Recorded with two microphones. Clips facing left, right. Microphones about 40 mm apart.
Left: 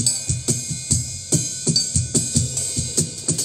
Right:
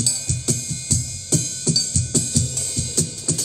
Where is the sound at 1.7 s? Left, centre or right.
Centre.